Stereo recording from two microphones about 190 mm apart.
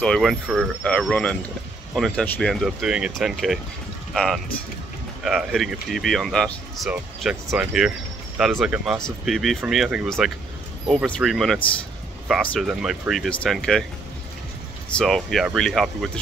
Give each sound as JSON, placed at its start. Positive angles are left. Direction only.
{"t": 0.0, "sound": "speech", "side_deg": 0}
{"t": 15.0, "sound": "speech", "side_deg": 0}